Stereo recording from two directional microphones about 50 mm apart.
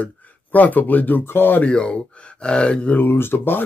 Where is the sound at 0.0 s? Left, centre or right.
Left.